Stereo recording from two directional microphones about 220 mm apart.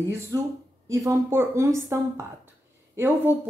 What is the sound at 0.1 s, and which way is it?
Speech, 10° right (ahead or behind).